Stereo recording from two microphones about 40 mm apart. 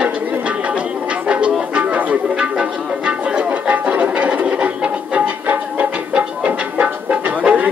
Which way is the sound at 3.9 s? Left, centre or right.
Right.